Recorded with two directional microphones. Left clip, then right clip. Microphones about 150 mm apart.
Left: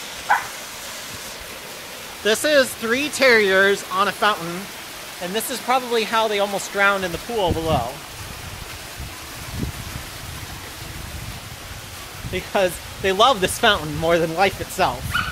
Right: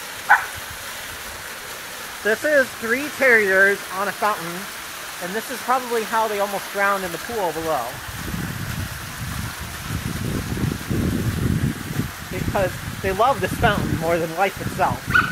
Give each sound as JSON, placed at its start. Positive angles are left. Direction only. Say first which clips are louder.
{"t": 0.3, "sound": "a sound", "louder": "right 4 dB", "side_deg": 0}
{"t": 2.2, "sound": "speech", "louder": "left 1 dB", "side_deg": 15}
{"t": 5.3, "sound": "speech", "louder": "left 1 dB", "side_deg": 10}
{"t": 12.5, "sound": "speech", "louder": "left 2 dB", "side_deg": 30}